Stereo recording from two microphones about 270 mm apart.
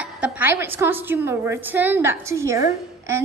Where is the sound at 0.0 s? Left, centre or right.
Centre.